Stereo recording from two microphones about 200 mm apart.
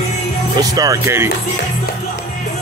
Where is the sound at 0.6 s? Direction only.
15° right (ahead or behind).